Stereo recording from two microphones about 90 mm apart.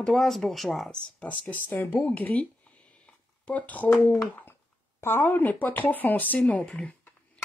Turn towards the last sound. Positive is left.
turn(degrees=15)  # may be behind; listen again after turning